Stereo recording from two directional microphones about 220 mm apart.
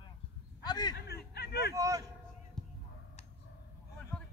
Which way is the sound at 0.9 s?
45° left (ahead or behind).